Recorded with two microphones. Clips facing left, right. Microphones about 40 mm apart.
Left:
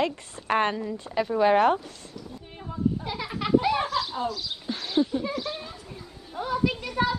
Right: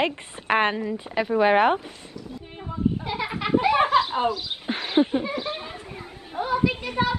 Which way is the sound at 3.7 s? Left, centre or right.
Right.